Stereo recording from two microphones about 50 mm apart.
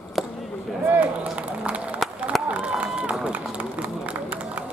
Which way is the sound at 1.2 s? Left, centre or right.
Right.